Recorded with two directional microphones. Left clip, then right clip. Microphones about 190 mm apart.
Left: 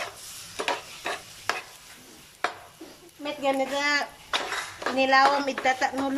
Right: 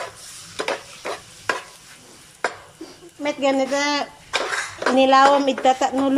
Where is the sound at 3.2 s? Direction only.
15° right (ahead or behind).